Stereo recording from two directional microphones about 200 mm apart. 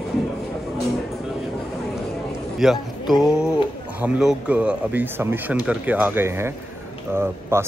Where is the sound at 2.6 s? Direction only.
Centre (ahead or behind).